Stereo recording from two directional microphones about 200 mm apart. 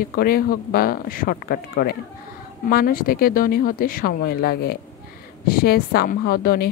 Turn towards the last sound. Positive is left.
turn(degrees=50)  # may be behind; listen again after turning